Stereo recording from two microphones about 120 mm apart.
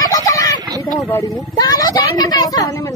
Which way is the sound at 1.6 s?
30° left (ahead or behind).